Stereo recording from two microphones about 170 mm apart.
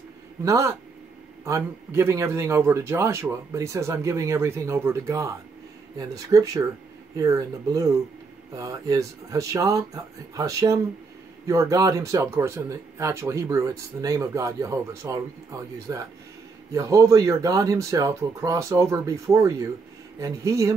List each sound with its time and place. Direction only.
0.5 s speech: 20° right (ahead or behind)